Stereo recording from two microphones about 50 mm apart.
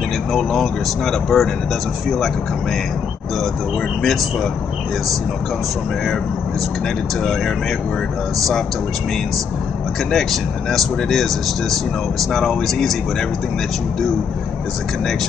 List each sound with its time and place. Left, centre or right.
0.3 s speech: centre
4.0 s speech: centre
10.1 s speech: centre